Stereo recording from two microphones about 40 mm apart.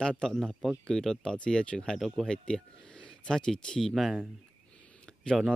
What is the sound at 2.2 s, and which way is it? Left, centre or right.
Speech, left.